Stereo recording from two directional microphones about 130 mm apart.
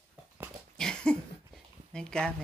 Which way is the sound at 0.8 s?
5° left (ahead or behind).